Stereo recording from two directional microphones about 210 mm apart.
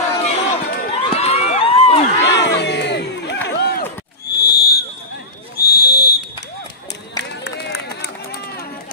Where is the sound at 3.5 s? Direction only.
50° left (ahead or behind).